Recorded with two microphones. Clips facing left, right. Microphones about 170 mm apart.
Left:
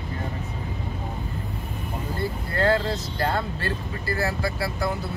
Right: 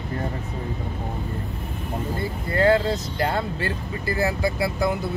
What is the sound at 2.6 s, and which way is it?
Speech, 20° right (ahead or behind).